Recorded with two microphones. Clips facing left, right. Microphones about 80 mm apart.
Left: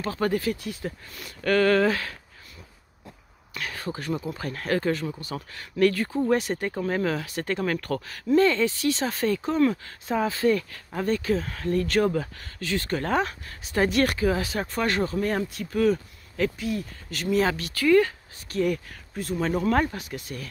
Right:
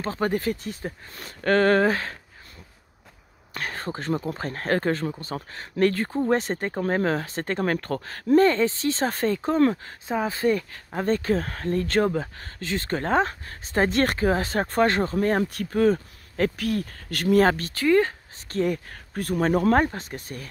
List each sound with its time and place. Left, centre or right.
0.0 s speech: right
3.5 s speech: right
16.5 s speech: right
17.7 s speech: right
19.1 s speech: right
19.7 s speech: right